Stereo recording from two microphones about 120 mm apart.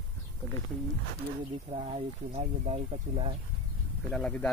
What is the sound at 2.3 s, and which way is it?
Speech, 70° right (ahead or behind).